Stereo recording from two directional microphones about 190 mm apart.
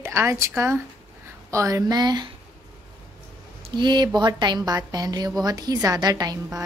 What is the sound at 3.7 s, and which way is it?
A woman's voice, 25° right (ahead or behind).